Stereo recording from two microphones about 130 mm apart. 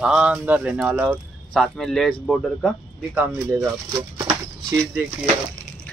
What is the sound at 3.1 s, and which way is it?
Speech, 15° right (ahead or behind).